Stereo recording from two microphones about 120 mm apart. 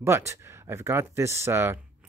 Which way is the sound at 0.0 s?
25° right (ahead or behind).